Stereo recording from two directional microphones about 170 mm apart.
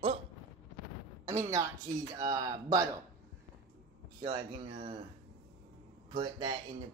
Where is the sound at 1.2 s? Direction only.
15° right (ahead or behind).